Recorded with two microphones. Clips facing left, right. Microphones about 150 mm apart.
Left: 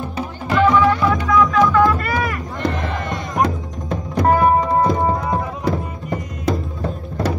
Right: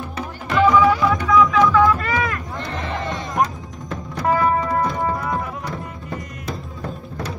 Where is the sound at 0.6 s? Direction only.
5° right (ahead or behind).